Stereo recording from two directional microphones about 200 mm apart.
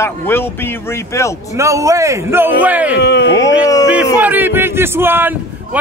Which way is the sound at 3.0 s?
55° left (ahead or behind).